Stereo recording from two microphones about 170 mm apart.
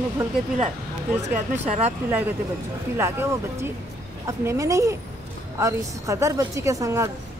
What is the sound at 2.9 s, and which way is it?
A woman's voice, 15° right (ahead or behind).